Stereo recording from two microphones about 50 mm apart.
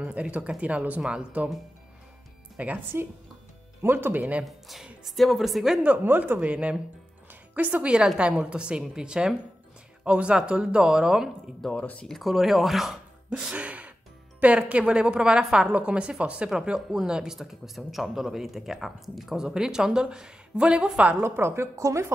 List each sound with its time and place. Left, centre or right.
0.0 s a woman's voice: right
2.6 s a woman's voice: right
2.9 s speech: right
4.5 s speech: centre
6.0 s speech: right
6.4 s a woman's voice: right
8.2 s a woman's voice: right
11.7 s speech: left
12.1 s speech: centre
13.3 s gasp: right
14.7 s a woman's voice: right
21.2 s a woman's voice: right